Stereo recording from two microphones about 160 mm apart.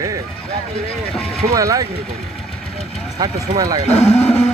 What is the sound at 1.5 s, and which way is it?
Speech, 20° right (ahead or behind).